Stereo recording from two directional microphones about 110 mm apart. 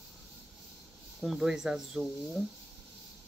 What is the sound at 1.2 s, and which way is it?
Speech, 5° right (ahead or behind).